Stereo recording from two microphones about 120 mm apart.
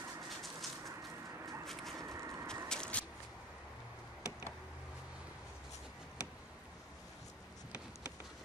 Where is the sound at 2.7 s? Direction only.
10° left (ahead or behind).